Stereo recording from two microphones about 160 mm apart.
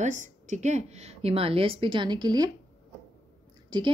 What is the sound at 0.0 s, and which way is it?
A woman's voice, 50° right (ahead or behind).